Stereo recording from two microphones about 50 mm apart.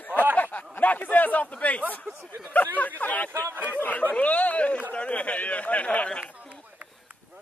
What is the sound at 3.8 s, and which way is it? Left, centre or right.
A man's voice, left.